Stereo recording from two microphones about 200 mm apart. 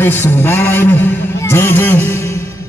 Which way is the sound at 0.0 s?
10° left (ahead or behind).